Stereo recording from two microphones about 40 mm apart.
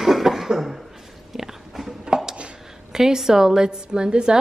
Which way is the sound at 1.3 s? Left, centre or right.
Centre.